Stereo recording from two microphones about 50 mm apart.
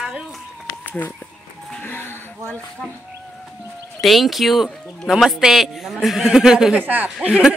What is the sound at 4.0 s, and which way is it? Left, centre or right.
A man's voice, centre.